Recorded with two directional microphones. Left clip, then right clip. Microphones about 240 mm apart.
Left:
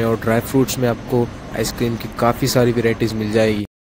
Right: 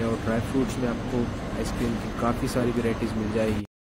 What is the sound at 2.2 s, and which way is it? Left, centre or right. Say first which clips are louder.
Speech: left 11 dB; left.